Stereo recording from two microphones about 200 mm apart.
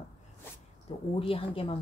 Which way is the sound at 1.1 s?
25° left (ahead or behind).